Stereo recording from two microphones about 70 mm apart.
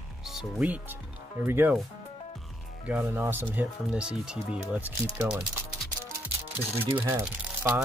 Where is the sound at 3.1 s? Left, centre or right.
Right.